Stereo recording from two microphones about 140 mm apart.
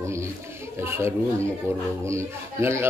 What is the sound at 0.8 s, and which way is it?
A man's voice, 15° right (ahead or behind).